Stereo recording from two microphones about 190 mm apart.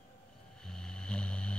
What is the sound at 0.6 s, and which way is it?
Music, 5° left (ahead or behind).